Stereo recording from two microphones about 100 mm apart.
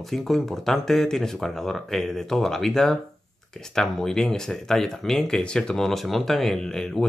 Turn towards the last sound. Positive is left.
turn(degrees=5)  # may be behind; listen again after turning